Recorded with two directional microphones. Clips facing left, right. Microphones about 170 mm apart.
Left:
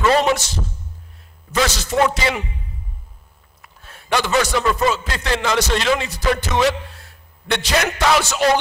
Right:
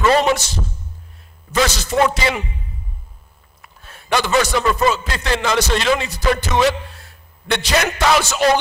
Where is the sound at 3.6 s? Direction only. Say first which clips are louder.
Right 1 dB; 20° right (ahead or behind).